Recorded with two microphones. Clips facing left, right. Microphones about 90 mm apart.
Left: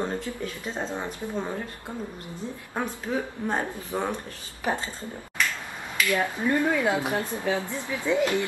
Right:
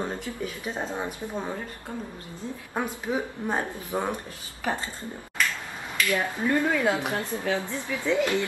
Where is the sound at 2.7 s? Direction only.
10° right (ahead or behind).